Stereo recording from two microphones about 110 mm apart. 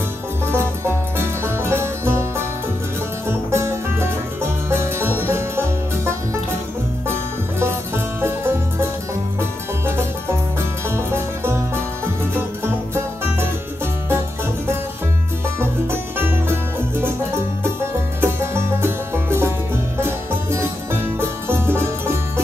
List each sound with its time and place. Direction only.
0.5 s music: 25° right (ahead or behind)
10.9 s music: 25° right (ahead or behind)
15.6 s music: 20° right (ahead or behind)
18.2 s music: 20° right (ahead or behind)